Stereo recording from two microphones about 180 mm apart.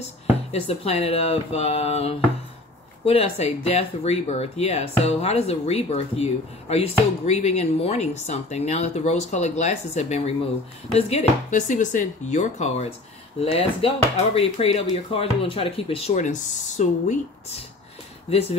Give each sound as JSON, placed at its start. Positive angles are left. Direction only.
{"t": 0.5, "sound": "speech", "side_deg": 35}